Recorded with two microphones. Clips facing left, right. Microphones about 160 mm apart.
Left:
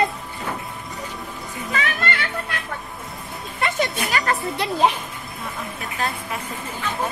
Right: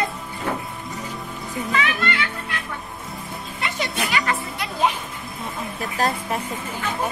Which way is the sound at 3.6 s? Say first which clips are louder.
Left 4 dB; 50° left (ahead or behind).